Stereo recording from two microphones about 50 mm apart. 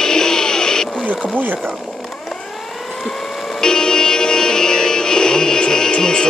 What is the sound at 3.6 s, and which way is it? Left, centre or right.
Music, centre.